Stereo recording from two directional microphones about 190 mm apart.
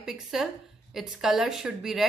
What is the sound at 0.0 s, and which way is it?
A woman's voice, centre (ahead or behind).